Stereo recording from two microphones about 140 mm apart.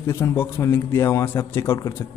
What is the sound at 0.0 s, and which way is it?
A man's voice, 20° left (ahead or behind).